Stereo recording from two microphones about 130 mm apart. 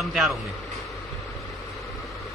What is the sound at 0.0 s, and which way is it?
Speech, 5° right (ahead or behind).